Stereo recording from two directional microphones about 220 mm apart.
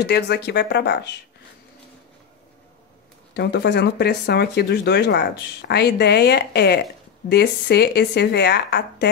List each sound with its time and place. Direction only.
0.0 s speech: 50° left (ahead or behind)
3.3 s speech: 50° left (ahead or behind)